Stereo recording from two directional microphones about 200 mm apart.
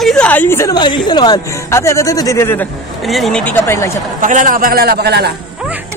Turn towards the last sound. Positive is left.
turn(degrees=-55)  # may be behind; listen again after turning